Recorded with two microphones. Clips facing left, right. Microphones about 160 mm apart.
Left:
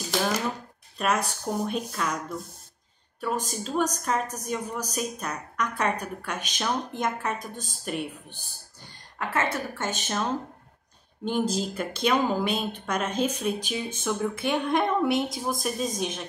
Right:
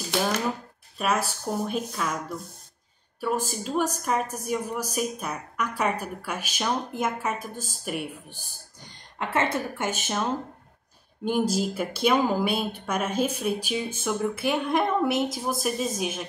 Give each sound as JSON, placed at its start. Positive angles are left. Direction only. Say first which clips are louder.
{"t": 0.9, "sound": "a woman's voice", "louder": "even", "side_deg": -5}
{"t": 9.2, "sound": "a woman's voice", "louder": "right 2 dB", "side_deg": -20}
{"t": 9.9, "sound": "speech", "louder": "right 1 dB", "side_deg": -5}
{"t": 11.2, "sound": "a woman's voice", "louder": "right 2 dB", "side_deg": -5}